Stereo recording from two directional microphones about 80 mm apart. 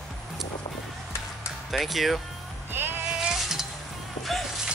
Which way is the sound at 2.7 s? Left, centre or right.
Right.